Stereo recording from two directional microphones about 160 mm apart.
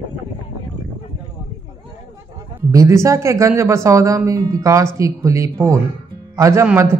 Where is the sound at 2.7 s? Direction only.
20° right (ahead or behind).